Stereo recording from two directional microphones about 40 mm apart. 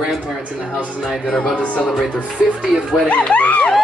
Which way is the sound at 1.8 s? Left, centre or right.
Centre.